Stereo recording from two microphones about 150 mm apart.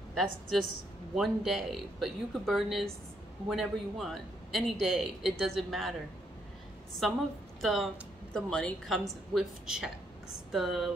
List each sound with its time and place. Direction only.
0.1 s a man's voice: centre (ahead or behind)
7.6 s a man's voice: centre (ahead or behind)